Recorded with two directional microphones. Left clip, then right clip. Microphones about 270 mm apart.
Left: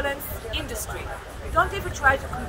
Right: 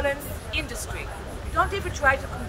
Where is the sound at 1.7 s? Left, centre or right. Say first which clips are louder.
Left 1 dB; centre.